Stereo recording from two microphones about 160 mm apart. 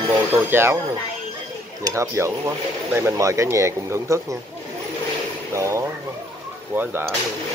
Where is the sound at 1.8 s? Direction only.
20° right (ahead or behind).